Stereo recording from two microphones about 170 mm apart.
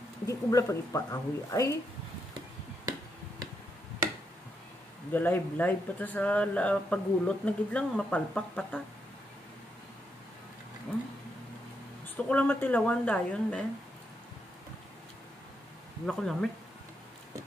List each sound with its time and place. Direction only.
0.3 s a woman's voice: 20° left (ahead or behind)
2.8 s finger snapping: 20° right (ahead or behind)
5.1 s speech: 10° left (ahead or behind)
12.2 s speech: 10° left (ahead or behind)
16.1 s speech: 5° left (ahead or behind)